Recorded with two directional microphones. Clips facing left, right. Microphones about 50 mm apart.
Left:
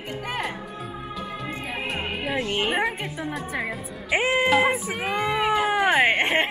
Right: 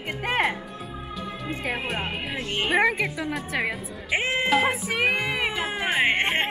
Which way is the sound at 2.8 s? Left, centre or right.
Right.